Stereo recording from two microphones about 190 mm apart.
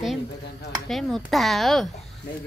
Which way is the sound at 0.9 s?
Centre (ahead or behind).